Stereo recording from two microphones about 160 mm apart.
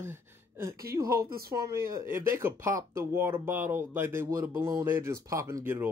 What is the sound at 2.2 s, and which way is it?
Speech, 15° right (ahead or behind).